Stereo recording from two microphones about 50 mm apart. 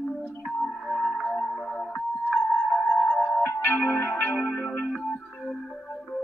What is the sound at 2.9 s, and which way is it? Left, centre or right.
Music, centre.